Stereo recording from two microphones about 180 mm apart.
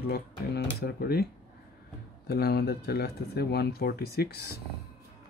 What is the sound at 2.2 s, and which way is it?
Speech, 60° left (ahead or behind).